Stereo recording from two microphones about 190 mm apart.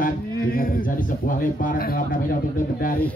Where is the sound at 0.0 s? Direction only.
50° left (ahead or behind).